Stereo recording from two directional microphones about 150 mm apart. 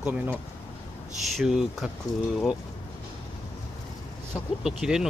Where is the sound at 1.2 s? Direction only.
Centre (ahead or behind).